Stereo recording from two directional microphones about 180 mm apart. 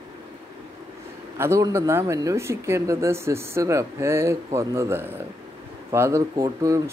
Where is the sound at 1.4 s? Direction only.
15° right (ahead or behind).